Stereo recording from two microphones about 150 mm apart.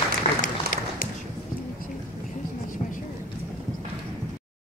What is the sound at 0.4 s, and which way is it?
Applause, 60° left (ahead or behind).